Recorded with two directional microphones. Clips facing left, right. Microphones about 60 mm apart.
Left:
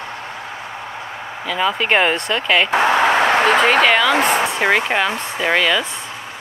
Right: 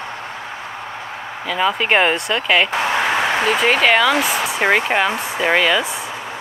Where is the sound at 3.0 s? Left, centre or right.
Left.